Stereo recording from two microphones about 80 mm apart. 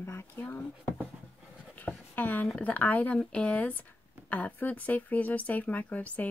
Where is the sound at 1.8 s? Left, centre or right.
Left.